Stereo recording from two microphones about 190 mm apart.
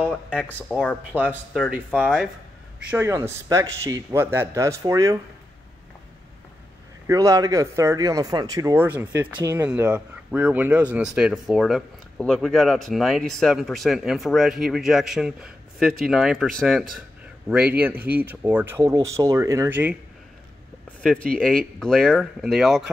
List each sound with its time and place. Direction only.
0.1 s speech: 5° left (ahead or behind)
1.1 s speech: 10° right (ahead or behind)
2.9 s speech: 15° right (ahead or behind)
7.1 s speech: 15° right (ahead or behind)
21.0 s speech: 5° left (ahead or behind)